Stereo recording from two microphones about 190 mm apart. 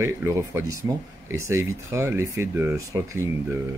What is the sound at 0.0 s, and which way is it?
Speech, 15° right (ahead or behind).